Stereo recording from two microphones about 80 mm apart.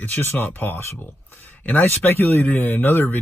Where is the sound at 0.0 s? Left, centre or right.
Left.